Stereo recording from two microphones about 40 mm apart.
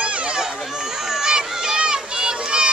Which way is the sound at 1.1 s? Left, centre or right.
Centre.